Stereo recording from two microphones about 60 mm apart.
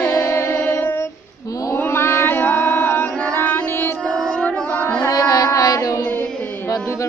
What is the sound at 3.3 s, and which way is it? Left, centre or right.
Music, left.